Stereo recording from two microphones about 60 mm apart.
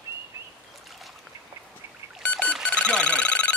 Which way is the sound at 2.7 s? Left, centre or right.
Centre.